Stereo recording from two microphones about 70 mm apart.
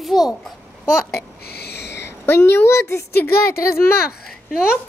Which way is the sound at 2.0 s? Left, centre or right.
Left.